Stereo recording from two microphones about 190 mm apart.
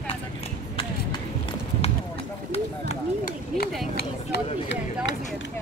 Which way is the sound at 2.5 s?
35° left (ahead or behind).